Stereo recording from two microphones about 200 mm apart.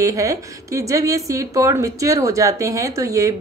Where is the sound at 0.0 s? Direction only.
15° right (ahead or behind).